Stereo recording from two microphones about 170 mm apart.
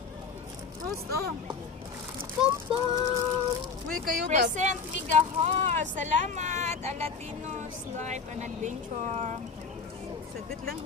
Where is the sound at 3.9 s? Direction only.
50° right (ahead or behind).